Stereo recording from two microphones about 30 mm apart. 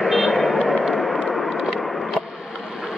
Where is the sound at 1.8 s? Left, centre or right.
Centre.